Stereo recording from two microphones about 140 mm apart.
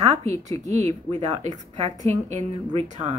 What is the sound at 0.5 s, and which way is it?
A woman's voice, 55° right (ahead or behind).